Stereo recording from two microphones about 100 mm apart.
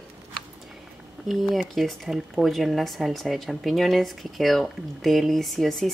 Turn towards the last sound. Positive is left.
turn(degrees=0)  # may be behind; listen again after turning